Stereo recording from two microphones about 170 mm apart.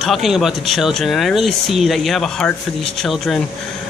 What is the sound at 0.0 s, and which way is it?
Speech, centre (ahead or behind).